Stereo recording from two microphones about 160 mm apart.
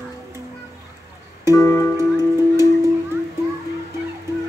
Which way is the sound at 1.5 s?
20° left (ahead or behind).